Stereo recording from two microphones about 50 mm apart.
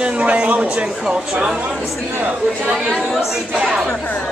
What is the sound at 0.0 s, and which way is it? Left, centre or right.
Speech, right.